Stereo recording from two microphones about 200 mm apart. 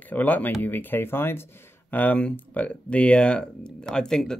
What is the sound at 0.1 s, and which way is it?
Speech, 10° left (ahead or behind).